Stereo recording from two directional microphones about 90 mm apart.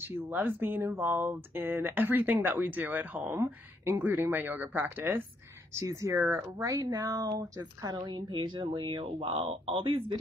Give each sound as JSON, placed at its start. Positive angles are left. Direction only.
{"t": 0.0, "sound": "speech", "side_deg": -25}
{"t": 5.7, "sound": "speech", "side_deg": -35}
{"t": 7.9, "sound": "speech", "side_deg": -55}